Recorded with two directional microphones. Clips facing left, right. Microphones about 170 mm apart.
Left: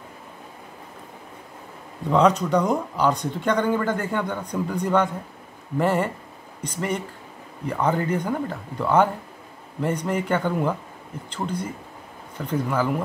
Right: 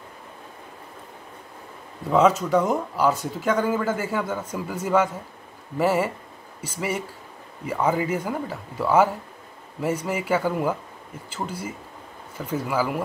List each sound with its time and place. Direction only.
2.0 s speech: 5° right (ahead or behind)